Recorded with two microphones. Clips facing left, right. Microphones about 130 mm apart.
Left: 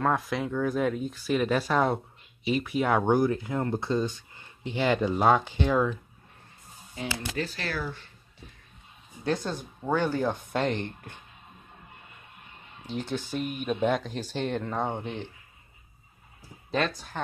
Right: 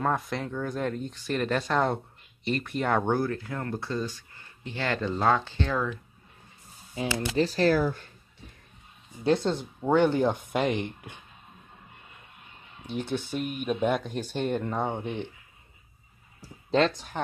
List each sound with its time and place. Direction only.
0.0 s speech: centre (ahead or behind)
7.1 s speech: 40° right (ahead or behind)
9.2 s speech: 20° right (ahead or behind)
13.0 s speech: 60° right (ahead or behind)
13.4 s speech: 5° right (ahead or behind)
16.7 s speech: 25° right (ahead or behind)